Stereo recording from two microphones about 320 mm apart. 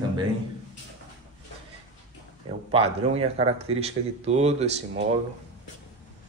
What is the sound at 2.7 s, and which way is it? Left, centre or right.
Speech, centre.